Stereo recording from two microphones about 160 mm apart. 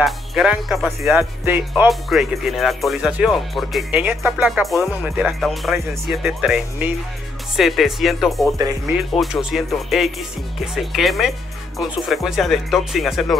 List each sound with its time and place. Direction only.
0.0 s speech: centre (ahead or behind)
8.5 s speech: 20° right (ahead or behind)
8.9 s speech: centre (ahead or behind)